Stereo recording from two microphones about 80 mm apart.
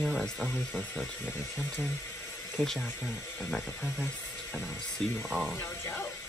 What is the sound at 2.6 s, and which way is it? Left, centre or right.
Speech, centre.